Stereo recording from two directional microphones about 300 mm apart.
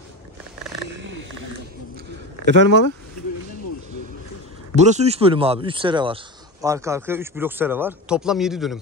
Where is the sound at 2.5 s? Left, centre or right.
Right.